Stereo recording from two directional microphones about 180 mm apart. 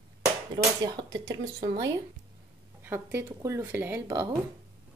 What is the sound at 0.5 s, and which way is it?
A woman's voice, 20° right (ahead or behind).